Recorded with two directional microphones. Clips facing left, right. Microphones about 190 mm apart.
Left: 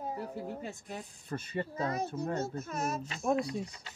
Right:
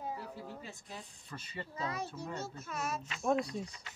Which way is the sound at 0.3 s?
20° left (ahead or behind).